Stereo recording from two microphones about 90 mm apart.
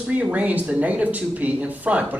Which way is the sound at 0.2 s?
15° right (ahead or behind).